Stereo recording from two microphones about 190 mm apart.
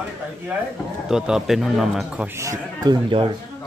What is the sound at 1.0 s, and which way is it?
A man's voice, 5° right (ahead or behind).